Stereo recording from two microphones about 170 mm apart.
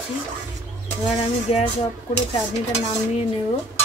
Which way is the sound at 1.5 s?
35° left (ahead or behind).